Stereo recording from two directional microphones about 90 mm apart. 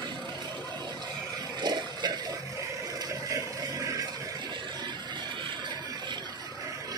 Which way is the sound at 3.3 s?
40° right (ahead or behind).